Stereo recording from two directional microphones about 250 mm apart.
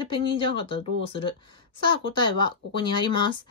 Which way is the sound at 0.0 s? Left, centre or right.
Left.